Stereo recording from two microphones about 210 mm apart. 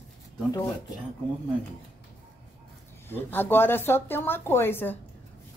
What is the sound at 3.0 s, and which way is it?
Speech, 10° left (ahead or behind).